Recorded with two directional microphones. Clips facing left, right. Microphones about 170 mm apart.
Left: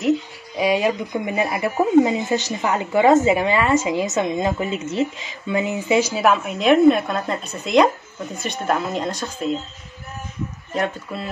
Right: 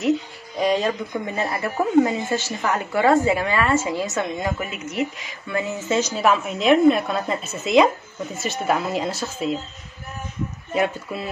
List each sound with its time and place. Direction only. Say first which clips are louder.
0.6 s a woman's voice: left 2 dB; 10° left (ahead or behind)
10.7 s speech: right 2 dB; 5° right (ahead or behind)